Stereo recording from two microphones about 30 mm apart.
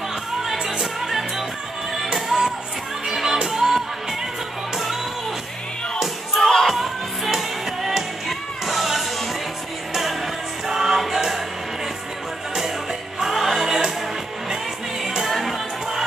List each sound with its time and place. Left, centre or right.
0.4 s music: centre
6.4 s music: centre
7.2 s music: centre
10.7 s music: centre
13.2 s music: centre
13.7 s music: right
15.2 s music: centre